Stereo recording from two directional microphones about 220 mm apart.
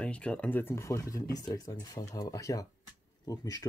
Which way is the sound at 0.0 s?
5° left (ahead or behind).